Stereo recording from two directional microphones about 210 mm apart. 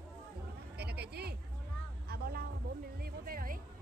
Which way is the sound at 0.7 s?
50° right (ahead or behind).